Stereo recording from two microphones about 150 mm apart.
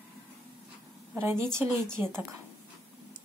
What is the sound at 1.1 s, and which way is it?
A woman's voice, 20° right (ahead or behind).